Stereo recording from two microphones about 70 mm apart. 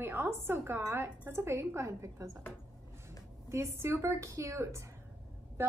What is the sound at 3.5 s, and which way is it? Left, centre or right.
A woman's voice, right.